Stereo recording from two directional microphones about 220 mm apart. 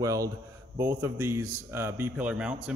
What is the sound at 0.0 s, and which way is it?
Speech, 15° right (ahead or behind).